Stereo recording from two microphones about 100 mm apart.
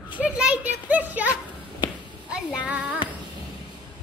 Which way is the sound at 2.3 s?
10° right (ahead or behind).